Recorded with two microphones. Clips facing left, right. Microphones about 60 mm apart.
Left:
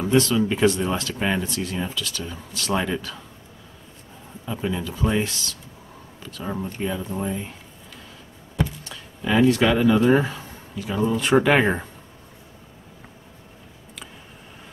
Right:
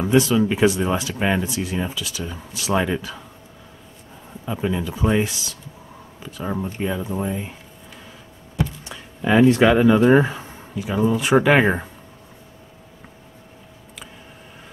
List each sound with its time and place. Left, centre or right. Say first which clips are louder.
0.0 s speech: right 2 dB; centre
4.5 s speech: right 3 dB; centre
8.8 s speech: right 4 dB; right